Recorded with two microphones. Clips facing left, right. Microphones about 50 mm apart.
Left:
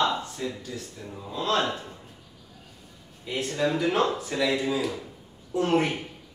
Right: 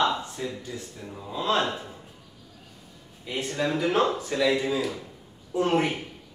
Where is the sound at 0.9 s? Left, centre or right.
Centre.